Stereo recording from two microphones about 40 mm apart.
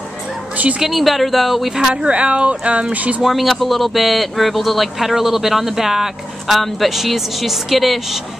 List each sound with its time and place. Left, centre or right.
0.8 s speech: centre
1.9 s speech: right
3.2 s speech: centre
6.5 s speech: centre